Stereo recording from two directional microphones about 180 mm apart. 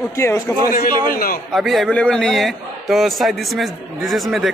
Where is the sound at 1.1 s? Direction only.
55° left (ahead or behind).